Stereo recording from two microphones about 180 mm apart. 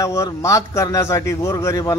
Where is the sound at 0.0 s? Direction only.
15° left (ahead or behind).